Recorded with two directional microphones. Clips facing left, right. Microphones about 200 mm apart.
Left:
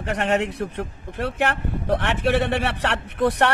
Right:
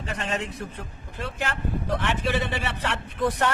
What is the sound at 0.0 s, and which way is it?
A man's voice, 65° left (ahead or behind).